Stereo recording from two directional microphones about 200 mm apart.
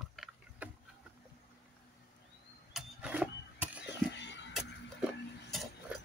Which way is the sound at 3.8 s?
60° left (ahead or behind).